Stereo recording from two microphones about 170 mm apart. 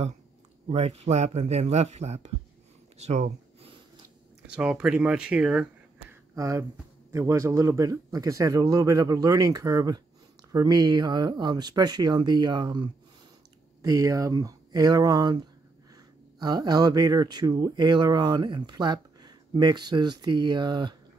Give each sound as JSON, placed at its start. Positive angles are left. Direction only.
{"t": 0.7, "sound": "speech", "side_deg": -35}
{"t": 4.5, "sound": "speech", "side_deg": -5}
{"t": 6.3, "sound": "speech", "side_deg": -20}